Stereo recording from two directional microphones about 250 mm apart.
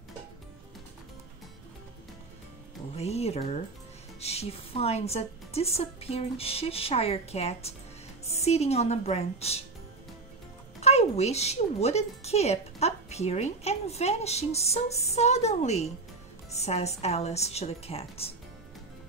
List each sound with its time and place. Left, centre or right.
3.0 s a woman's voice: left
10.8 s a woman's voice: left